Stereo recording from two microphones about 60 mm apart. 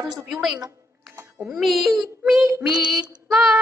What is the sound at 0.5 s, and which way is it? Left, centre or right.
Computer keyboard, right.